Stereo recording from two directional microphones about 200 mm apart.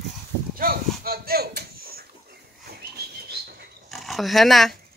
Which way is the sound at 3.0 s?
50° right (ahead or behind).